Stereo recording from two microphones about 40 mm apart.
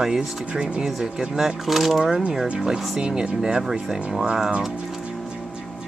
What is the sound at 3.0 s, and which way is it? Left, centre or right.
Speech, right.